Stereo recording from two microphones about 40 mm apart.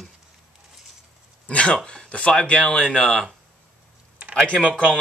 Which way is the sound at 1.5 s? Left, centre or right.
Left.